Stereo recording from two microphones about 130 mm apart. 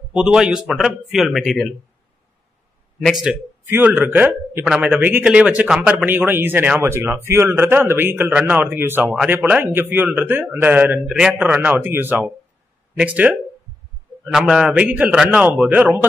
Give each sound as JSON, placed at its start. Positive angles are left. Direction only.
{"t": 0.1, "sound": "speech", "side_deg": -5}
{"t": 3.1, "sound": "speech", "side_deg": -5}
{"t": 3.6, "sound": "speech", "side_deg": -15}